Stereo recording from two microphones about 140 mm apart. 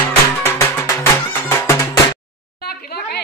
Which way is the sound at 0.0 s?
20° left (ahead or behind).